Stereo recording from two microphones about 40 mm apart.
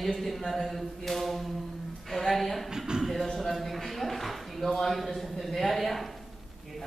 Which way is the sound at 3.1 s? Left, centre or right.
Centre.